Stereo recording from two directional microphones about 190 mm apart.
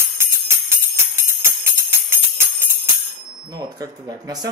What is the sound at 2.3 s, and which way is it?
Jingle bell, 15° right (ahead or behind).